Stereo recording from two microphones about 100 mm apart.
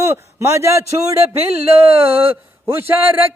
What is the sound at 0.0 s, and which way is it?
Speech, 25° right (ahead or behind).